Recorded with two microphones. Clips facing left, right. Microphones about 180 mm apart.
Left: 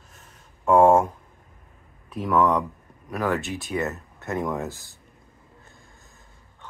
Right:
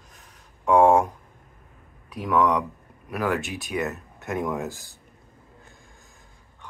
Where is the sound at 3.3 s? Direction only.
15° right (ahead or behind).